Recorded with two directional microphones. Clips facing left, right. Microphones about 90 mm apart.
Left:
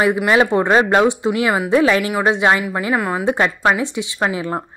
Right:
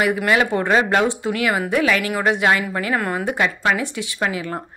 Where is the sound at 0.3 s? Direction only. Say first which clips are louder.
Left 4 dB; 25° left (ahead or behind).